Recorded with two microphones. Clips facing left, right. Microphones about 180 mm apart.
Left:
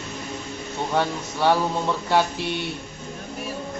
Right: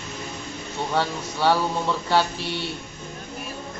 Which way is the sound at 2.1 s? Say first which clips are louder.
Left 2 dB; 20° left (ahead or behind).